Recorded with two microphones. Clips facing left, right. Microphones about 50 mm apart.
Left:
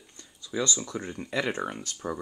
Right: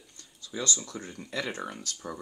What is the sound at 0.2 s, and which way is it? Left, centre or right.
Speech, left.